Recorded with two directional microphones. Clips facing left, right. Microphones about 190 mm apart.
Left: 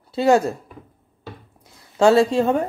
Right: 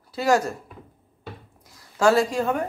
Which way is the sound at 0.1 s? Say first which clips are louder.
Left 5 dB; 25° left (ahead or behind).